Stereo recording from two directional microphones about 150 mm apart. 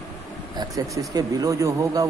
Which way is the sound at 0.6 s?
25° right (ahead or behind).